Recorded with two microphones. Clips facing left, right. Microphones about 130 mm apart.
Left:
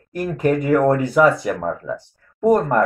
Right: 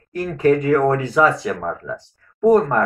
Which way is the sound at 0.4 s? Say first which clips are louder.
Right 2 dB; 15° left (ahead or behind).